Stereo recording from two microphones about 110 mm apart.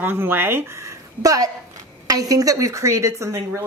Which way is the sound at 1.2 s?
35° right (ahead or behind).